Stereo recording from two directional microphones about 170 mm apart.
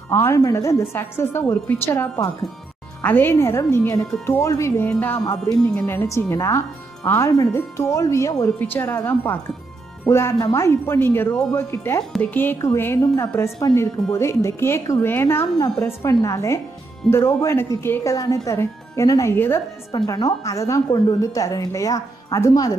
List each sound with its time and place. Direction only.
0.1 s speech: 15° left (ahead or behind)
5.9 s a woman's voice: 15° left (ahead or behind)